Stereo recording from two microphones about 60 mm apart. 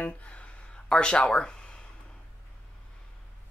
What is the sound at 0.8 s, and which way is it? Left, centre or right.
Speech, centre.